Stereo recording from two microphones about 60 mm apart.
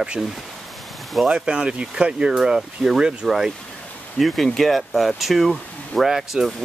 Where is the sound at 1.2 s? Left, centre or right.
Centre.